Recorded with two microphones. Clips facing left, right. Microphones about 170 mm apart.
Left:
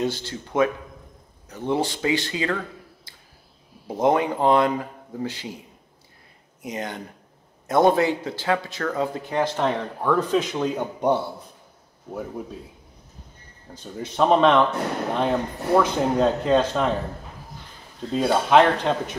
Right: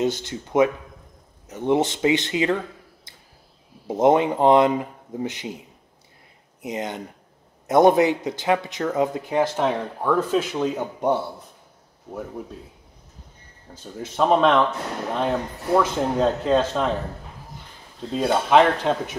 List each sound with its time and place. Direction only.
0.0 s speech: 20° right (ahead or behind)
3.8 s speech: 20° right (ahead or behind)
6.6 s speech: 20° right (ahead or behind); by 11.1 s centre (ahead or behind)
13.7 s speech: centre (ahead or behind)
18.1 s speech: centre (ahead or behind)